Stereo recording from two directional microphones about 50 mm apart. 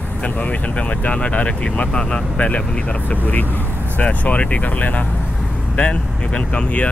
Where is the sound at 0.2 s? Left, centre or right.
Left.